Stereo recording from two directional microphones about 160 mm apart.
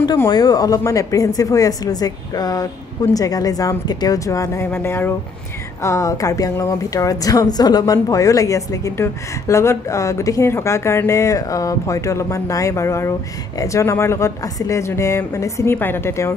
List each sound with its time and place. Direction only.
0.0 s a woman's voice: 25° left (ahead or behind)